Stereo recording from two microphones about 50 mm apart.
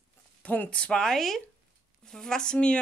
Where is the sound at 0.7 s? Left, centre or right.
Left.